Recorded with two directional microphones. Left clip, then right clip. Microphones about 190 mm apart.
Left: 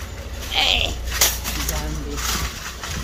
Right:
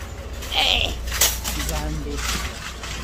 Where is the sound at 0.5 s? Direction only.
5° right (ahead or behind).